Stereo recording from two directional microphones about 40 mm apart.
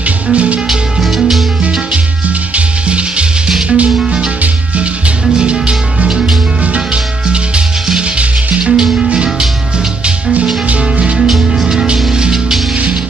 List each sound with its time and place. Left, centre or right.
0.3 s music: right
0.7 s music: centre
2.2 s music: right
5.4 s music: right
6.0 s music: centre
6.6 s music: right
8.7 s music: centre
10.7 s music: right
11.1 s music: centre